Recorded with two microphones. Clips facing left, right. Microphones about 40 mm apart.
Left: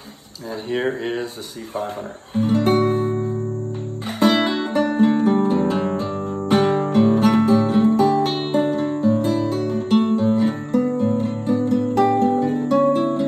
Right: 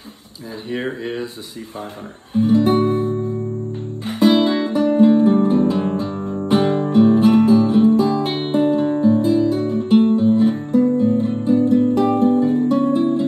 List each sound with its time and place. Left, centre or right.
0.7 s speech: left
2.3 s music: left
8.2 s music: right
8.5 s music: left
9.0 s guitar: left
11.9 s music: left